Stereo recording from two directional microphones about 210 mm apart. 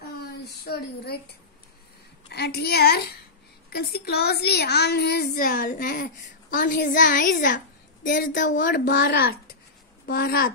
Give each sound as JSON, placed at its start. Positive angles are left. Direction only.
{"t": 0.7, "sound": "a woman's voice", "side_deg": 50}
{"t": 2.2, "sound": "a child's voice", "side_deg": 50}
{"t": 8.8, "sound": "a woman's voice", "side_deg": 50}